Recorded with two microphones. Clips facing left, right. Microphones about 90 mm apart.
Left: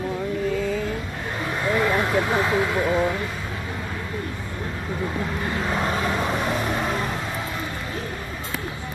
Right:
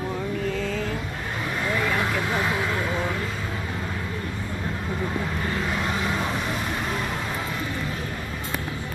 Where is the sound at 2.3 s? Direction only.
25° left (ahead or behind).